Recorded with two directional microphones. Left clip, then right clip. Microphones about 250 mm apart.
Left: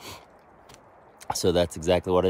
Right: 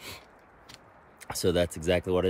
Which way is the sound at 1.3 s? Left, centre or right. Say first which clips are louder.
Left 3 dB; centre.